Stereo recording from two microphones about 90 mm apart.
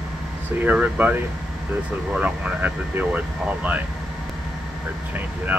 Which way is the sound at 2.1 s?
20° right (ahead or behind).